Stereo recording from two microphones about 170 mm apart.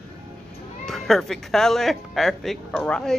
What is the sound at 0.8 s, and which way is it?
Speech, centre (ahead or behind).